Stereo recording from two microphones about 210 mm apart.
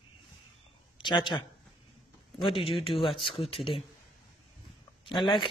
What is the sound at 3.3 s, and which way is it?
Speech, 25° left (ahead or behind).